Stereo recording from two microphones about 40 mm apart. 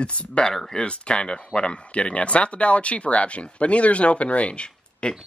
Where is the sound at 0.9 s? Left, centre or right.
Left.